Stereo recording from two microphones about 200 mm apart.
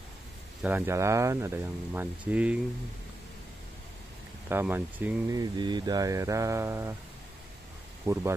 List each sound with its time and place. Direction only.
0.6 s speech: 10° right (ahead or behind)
4.5 s speech: 10° right (ahead or behind)
5.4 s speech: 20° right (ahead or behind)
8.1 s speech: 15° right (ahead or behind)